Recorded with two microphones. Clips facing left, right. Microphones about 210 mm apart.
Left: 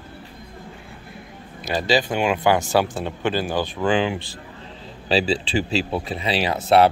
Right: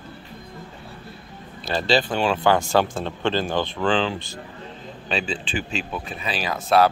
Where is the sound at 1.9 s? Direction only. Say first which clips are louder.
Left 1 dB; 10° left (ahead or behind).